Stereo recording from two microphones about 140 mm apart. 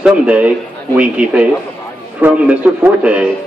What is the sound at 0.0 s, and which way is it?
A man's voice, 10° right (ahead or behind).